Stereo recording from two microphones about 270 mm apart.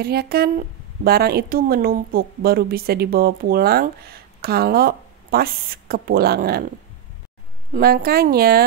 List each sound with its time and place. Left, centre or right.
0.0 s speech: right
7.7 s speech: right